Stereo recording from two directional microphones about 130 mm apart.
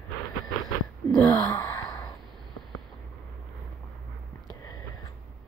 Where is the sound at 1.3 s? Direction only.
25° left (ahead or behind).